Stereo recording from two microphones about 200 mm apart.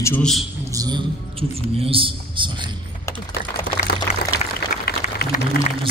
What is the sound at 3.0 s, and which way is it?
Typing, 15° left (ahead or behind).